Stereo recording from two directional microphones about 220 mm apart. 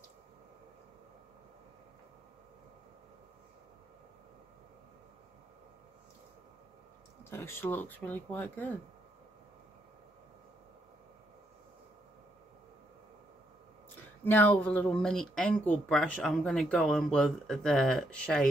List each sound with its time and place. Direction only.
7.2 s speech: 10° left (ahead or behind)
14.2 s speech: 10° left (ahead or behind)